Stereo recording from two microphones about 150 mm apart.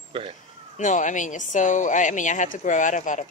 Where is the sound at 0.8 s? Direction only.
55° left (ahead or behind).